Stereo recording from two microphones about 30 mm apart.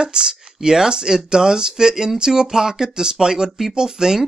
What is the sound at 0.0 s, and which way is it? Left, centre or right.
Speech, right.